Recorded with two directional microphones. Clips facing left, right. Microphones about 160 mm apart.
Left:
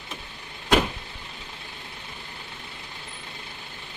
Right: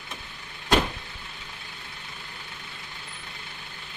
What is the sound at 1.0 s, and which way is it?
Vehicle, 25° left (ahead or behind).